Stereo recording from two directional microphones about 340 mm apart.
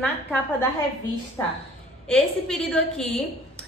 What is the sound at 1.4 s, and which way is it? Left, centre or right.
A woman's voice, centre.